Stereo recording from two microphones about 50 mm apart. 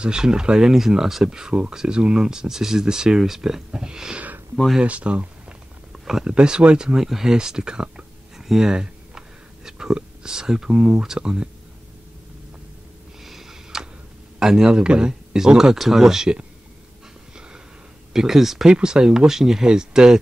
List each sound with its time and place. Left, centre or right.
0.0 s speech: centre
13.2 s a sound: centre
14.4 s speech: centre
18.1 s speech: centre